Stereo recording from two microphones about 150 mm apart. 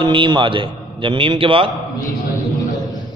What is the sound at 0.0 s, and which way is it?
A man's voice, 35° right (ahead or behind).